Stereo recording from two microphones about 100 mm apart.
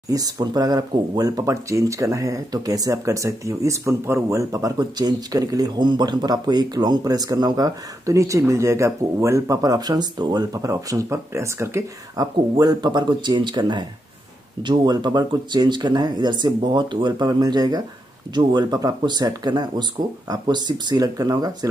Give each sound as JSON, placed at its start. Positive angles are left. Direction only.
{"t": 0.1, "sound": "speech", "side_deg": -40}
{"t": 12.2, "sound": "speech", "side_deg": -45}